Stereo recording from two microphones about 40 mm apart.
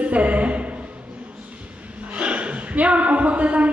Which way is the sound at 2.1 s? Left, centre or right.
Right.